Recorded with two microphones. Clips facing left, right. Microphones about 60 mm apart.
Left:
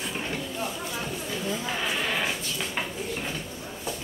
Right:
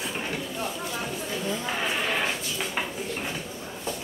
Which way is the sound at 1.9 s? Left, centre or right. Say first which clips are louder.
Right 1 dB; centre.